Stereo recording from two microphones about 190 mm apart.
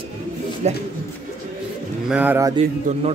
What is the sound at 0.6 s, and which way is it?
Speech, 35° right (ahead or behind).